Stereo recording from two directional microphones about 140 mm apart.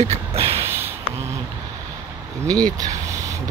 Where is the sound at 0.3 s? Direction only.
45° right (ahead or behind).